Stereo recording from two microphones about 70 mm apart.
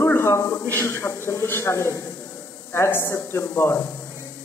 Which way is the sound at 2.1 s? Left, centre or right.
Left.